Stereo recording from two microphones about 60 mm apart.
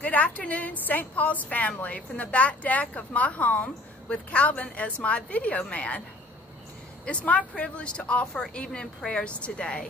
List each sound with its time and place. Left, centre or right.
0.0 s a woman's voice: left
7.1 s a woman's voice: left